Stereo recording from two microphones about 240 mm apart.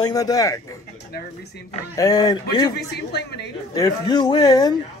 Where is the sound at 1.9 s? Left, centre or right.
Centre.